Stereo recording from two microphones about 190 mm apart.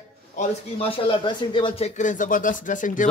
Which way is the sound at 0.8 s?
30° left (ahead or behind).